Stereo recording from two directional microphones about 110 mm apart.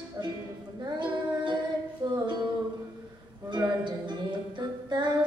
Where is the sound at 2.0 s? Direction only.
45° right (ahead or behind).